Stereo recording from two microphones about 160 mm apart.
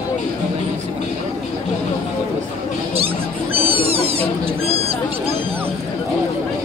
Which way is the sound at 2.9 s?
40° right (ahead or behind).